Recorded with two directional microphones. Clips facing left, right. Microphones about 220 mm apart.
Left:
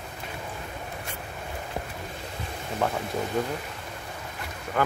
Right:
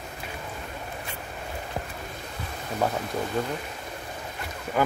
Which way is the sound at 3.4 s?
5° left (ahead or behind).